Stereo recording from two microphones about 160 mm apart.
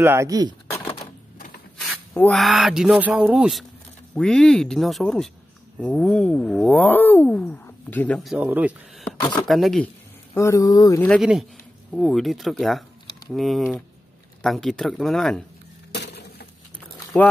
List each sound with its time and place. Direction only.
0.0 s speech: 15° right (ahead or behind)
0.7 s typewriter: 15° left (ahead or behind)
2.3 s speech: centre (ahead or behind)
8.2 s speech: centre (ahead or behind)
9.5 s speech: centre (ahead or behind)
10.3 s speech: 20° left (ahead or behind)
11.1 s speech: 5° right (ahead or behind)
15.9 s a sound: 90° left
17.1 s speech: 10° left (ahead or behind)